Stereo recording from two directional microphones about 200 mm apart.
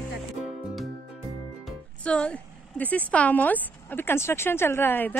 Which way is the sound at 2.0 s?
5° left (ahead or behind).